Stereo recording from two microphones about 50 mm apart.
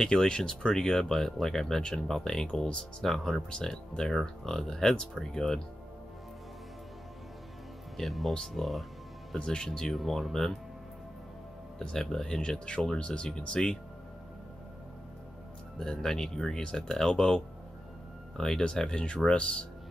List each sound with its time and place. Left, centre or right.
0.0 s speech: centre
8.0 s speech: centre
9.4 s speech: centre
11.8 s speech: centre
15.8 s speech: centre
18.4 s speech: centre